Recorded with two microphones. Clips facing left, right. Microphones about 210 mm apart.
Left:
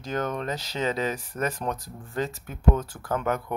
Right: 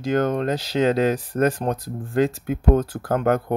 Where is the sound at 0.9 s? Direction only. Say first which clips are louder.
Right 9 dB; 85° right.